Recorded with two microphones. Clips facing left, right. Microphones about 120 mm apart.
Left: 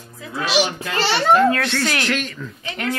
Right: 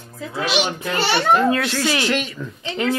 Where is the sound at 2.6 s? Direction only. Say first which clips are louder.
Right 4 dB; 25° right (ahead or behind).